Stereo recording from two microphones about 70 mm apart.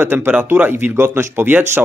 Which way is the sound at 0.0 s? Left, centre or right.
Right.